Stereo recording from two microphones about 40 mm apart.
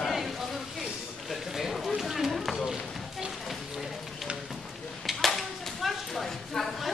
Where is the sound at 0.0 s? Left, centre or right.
Centre.